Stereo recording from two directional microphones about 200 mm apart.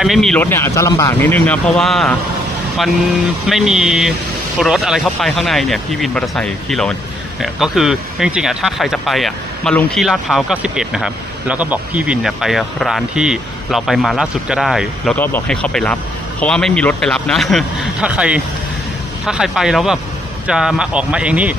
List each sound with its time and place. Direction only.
0.0 s speech: centre (ahead or behind)
3.4 s speech: centre (ahead or behind)
15.1 s speech: 10° left (ahead or behind); by 21.5 s 5° right (ahead or behind)